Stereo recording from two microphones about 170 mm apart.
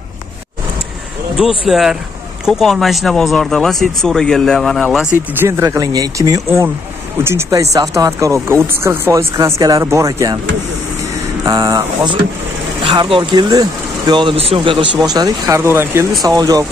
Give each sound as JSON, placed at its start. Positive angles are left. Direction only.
{"t": 1.7, "sound": "speech", "side_deg": 0}
{"t": 5.4, "sound": "speech", "side_deg": -15}
{"t": 11.4, "sound": "speech", "side_deg": -20}